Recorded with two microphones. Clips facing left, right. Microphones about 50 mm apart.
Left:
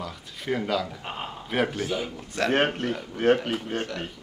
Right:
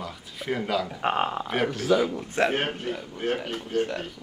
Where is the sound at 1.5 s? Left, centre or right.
Centre.